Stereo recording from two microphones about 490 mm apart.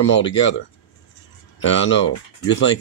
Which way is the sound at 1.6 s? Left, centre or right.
Left.